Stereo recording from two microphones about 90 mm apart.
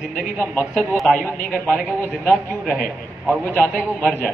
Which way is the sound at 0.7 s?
Centre (ahead or behind).